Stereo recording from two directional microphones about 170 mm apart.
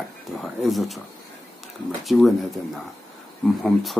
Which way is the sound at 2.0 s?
Centre (ahead or behind).